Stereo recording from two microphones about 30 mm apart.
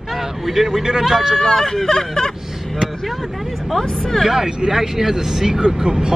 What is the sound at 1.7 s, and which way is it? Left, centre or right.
Speech, centre.